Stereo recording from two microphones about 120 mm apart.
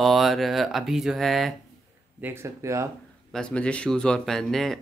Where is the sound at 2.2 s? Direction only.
20° right (ahead or behind).